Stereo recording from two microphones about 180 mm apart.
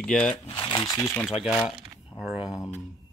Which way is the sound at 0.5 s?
25° left (ahead or behind).